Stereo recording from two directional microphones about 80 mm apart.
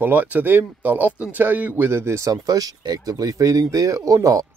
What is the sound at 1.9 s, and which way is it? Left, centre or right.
Speech, right.